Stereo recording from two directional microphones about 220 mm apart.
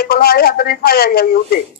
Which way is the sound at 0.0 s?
45° left (ahead or behind).